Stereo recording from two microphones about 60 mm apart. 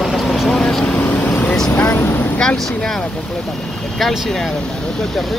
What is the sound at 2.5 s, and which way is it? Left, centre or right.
Speech, centre.